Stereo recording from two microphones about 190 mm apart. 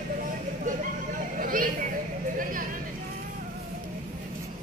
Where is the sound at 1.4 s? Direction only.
45° right (ahead or behind).